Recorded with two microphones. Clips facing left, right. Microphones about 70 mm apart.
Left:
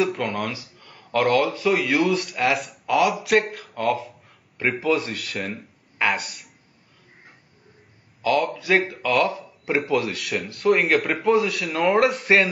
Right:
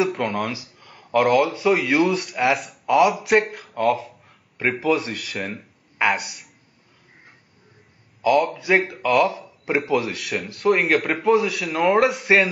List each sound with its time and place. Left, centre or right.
0.1 s speech: centre
0.5 s speech: centre
1.7 s speech: centre
8.4 s speech: centre